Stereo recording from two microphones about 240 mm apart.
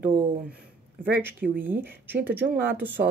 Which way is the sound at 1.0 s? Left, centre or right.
Centre.